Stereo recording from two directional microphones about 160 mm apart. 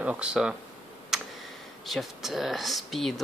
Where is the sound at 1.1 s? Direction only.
5° right (ahead or behind).